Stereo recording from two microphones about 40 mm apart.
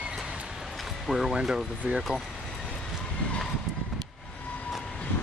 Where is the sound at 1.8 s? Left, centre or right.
Right.